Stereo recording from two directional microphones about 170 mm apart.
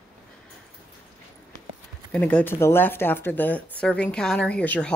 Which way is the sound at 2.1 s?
10° left (ahead or behind).